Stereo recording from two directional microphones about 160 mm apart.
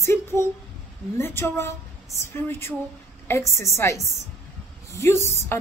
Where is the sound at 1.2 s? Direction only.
15° left (ahead or behind).